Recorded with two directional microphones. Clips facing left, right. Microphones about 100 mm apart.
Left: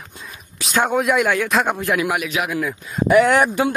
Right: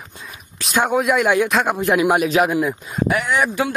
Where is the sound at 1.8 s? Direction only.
25° right (ahead or behind).